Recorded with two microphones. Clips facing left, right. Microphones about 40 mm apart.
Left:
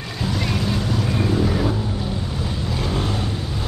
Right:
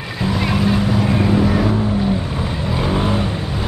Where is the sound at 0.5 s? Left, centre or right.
Right.